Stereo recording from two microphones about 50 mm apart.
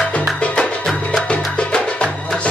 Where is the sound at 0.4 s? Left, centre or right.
Left.